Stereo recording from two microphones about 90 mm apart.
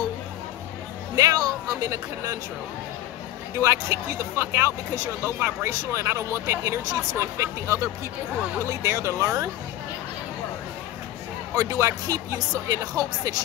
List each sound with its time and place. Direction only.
1.1 s music: 45° right (ahead or behind)
3.5 s speech: 35° right (ahead or behind)
11.5 s speech: 35° right (ahead or behind)